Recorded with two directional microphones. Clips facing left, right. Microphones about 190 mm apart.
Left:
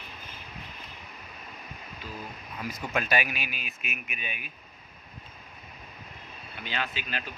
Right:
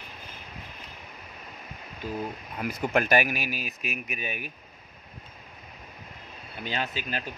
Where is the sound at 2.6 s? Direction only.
60° right (ahead or behind); by 4.4 s 40° right (ahead or behind).